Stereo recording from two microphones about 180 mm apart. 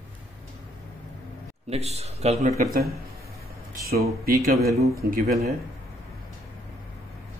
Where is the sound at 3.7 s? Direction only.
55° right (ahead or behind).